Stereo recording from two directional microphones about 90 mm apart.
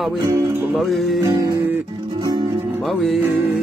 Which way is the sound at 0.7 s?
Centre (ahead or behind).